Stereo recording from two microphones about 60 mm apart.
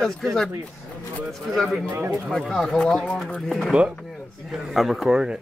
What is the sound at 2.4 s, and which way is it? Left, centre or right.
A man's voice, centre.